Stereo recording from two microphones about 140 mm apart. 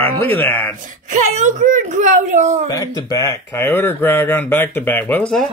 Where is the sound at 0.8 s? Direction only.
65° right (ahead or behind).